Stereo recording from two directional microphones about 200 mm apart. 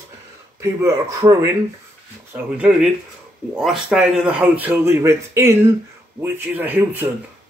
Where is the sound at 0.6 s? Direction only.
15° right (ahead or behind).